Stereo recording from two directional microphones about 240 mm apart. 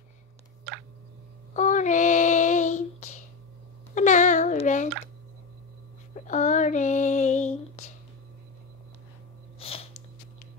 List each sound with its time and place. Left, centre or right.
1.5 s child singing: left
3.9 s a sound: left
6.1 s female singing: left
9.6 s sniff: left